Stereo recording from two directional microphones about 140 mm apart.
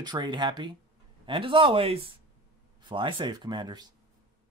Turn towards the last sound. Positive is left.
turn(degrees=-30)  # may be behind; listen again after turning